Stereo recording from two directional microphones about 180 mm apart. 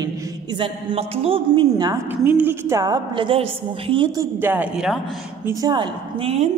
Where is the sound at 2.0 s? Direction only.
10° right (ahead or behind).